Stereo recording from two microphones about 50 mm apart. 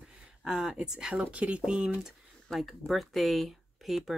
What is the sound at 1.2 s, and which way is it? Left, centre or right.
Speech, right.